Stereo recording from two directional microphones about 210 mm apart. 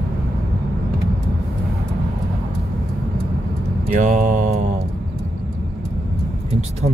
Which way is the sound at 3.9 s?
35° right (ahead or behind).